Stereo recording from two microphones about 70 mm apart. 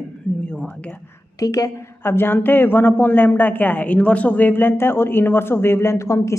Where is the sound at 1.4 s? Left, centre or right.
Left.